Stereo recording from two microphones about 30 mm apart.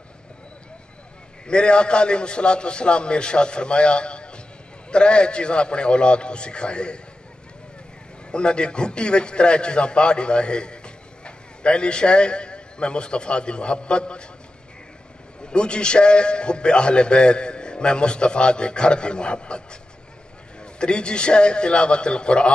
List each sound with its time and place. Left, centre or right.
1.5 s a man's voice: left
8.3 s a man's voice: left
15.4 s a man's voice: left
20.8 s a man's voice: left